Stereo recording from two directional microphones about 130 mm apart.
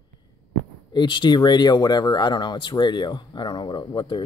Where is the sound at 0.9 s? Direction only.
35° left (ahead or behind).